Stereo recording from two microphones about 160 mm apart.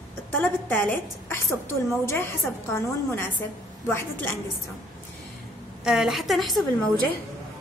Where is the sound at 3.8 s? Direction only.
15° left (ahead or behind).